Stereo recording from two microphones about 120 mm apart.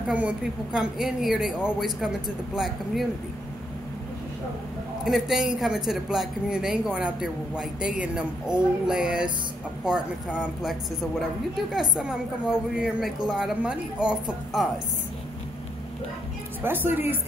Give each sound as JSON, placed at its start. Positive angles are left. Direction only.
{"t": 0.1, "sound": "speech", "side_deg": -10}
{"t": 5.0, "sound": "speech", "side_deg": -5}
{"t": 16.6, "sound": "a woman's voice", "side_deg": -15}